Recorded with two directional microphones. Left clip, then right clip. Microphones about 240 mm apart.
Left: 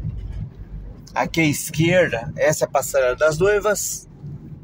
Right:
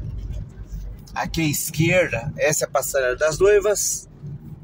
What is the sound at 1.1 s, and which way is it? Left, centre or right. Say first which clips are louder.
Speech: left 4 dB; centre.